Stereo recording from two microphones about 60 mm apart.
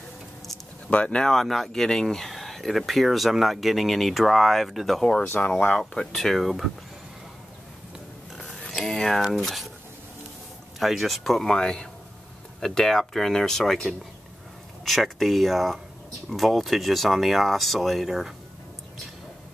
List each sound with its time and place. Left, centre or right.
0.8 s speech: centre
1.3 s speech: centre
5.0 s speech: centre
8.5 s speech: centre
10.8 s speech: centre